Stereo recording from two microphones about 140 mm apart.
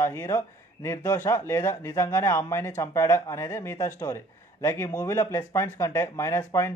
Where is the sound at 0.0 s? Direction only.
20° left (ahead or behind).